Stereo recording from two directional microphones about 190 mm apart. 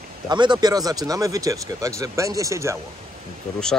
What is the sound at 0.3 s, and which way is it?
Speech, 25° right (ahead or behind).